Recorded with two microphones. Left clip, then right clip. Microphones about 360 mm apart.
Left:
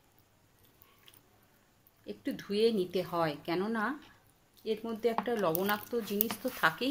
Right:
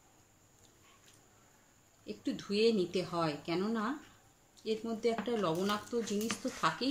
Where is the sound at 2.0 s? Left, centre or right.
Left.